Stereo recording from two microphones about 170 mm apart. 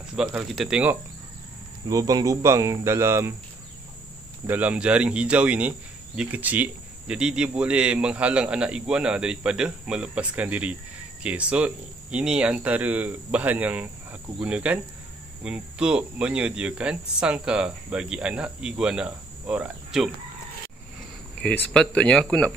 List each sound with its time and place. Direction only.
0.1 s speech: 5° right (ahead or behind)
1.9 s a man's voice: 20° right (ahead or behind)
4.5 s a man's voice: 10° right (ahead or behind)
21.4 s speech: 5° left (ahead or behind)